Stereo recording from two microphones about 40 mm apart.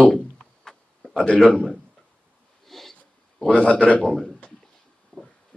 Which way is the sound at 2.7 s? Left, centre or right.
Centre.